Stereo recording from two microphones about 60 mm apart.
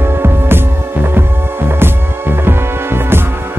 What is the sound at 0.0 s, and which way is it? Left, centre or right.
Music, right.